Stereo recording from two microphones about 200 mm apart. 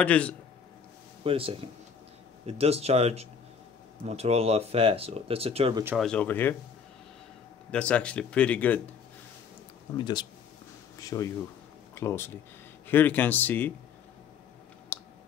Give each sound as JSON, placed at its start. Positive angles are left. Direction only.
{"t": 0.0, "sound": "speech", "side_deg": 5}
{"t": 1.2, "sound": "speech", "side_deg": -25}
{"t": 5.9, "sound": "speech", "side_deg": 5}
{"t": 7.7, "sound": "speech", "side_deg": 5}
{"t": 9.9, "sound": "speech", "side_deg": 20}
{"t": 14.9, "sound": "clicking", "side_deg": 10}